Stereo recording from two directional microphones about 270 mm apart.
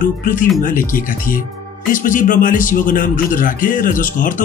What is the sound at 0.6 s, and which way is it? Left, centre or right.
A man's voice, left.